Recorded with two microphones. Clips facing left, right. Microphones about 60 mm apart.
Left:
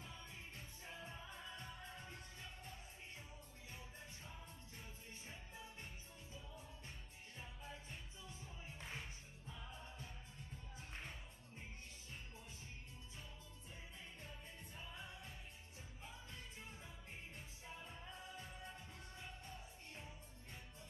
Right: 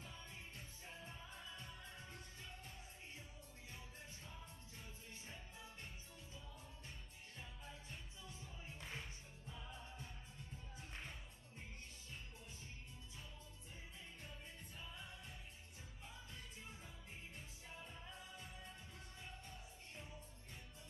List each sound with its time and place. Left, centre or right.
0.1 s music: left
3.7 s music: left
7.3 s music: centre
8.8 s music: centre
10.8 s music: centre
14.8 s music: left
17.7 s music: centre
18.1 s music: left
19.2 s music: left